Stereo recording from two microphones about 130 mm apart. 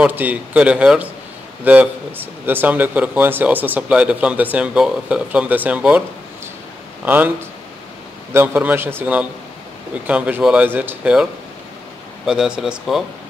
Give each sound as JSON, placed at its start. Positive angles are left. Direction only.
{"t": 0.0, "sound": "speech", "side_deg": -15}
{"t": 7.1, "sound": "speech", "side_deg": -15}
{"t": 12.3, "sound": "speech", "side_deg": -5}